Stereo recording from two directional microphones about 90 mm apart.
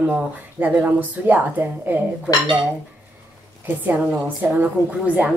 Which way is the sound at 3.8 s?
20° right (ahead or behind).